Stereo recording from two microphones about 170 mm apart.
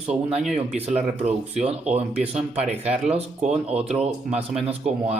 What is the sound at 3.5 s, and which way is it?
Speech, 40° right (ahead or behind).